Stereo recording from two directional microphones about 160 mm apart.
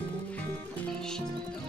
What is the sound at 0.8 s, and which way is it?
Music, 5° left (ahead or behind).